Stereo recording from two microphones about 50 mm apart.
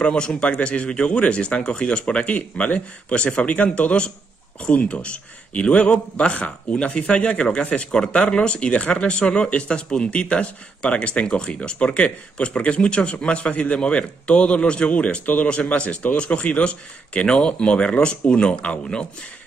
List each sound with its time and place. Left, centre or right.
0.0 s speech: centre